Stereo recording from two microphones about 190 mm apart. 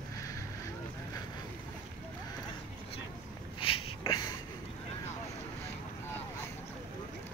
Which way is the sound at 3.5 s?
30° left (ahead or behind).